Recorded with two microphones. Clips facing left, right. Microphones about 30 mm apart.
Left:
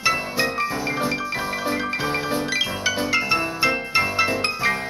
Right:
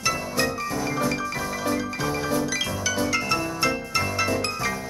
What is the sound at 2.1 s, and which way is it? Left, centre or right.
Music, left.